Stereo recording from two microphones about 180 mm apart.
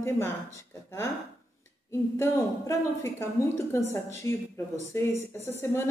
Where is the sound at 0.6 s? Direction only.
15° left (ahead or behind).